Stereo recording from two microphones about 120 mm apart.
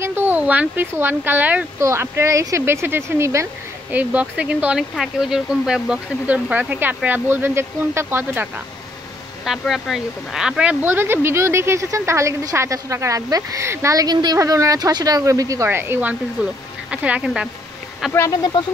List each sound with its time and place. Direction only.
0.0 s speech: 20° right (ahead or behind)
3.9 s speech: 10° right (ahead or behind)
9.4 s speech: centre (ahead or behind)